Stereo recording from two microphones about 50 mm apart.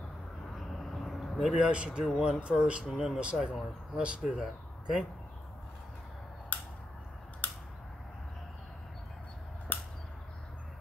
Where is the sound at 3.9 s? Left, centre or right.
Centre.